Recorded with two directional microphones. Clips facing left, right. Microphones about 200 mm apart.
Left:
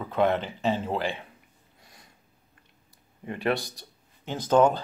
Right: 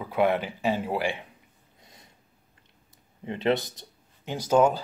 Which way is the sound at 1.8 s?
20° right (ahead or behind).